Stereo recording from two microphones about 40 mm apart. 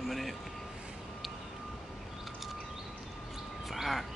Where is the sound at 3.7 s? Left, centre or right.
Centre.